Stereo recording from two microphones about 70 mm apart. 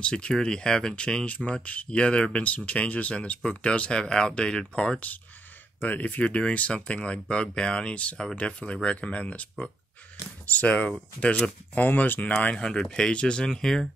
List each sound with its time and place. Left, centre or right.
0.0 s speech: centre
12.5 s speech: centre